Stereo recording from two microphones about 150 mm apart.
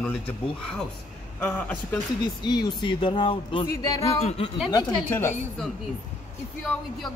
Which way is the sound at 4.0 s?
45° left (ahead or behind).